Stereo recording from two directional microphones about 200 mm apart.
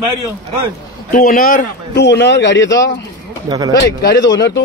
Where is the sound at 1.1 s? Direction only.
45° left (ahead or behind).